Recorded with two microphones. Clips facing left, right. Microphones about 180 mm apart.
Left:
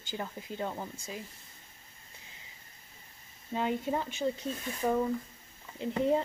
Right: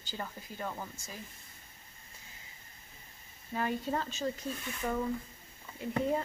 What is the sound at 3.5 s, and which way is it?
Speech, 20° left (ahead or behind).